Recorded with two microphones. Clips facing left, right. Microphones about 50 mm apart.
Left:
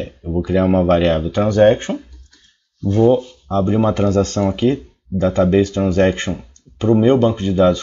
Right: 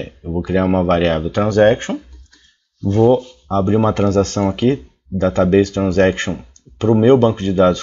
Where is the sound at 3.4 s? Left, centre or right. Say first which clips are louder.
Right 1 dB; right.